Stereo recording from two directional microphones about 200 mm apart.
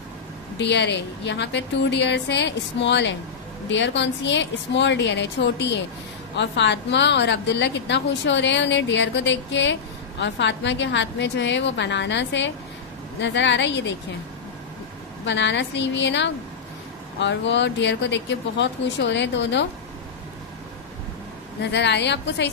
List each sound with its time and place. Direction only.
0.6 s a woman's voice: 60° left (ahead or behind)
15.2 s a woman's voice: 60° left (ahead or behind)
21.7 s a woman's voice: 60° left (ahead or behind)